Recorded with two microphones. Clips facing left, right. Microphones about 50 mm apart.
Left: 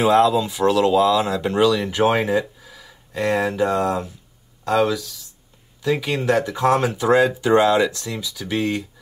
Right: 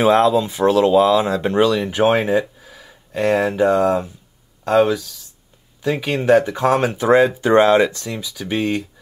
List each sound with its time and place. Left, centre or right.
0.0 s speech: right
2.2 s a sound: centre
3.4 s speech: right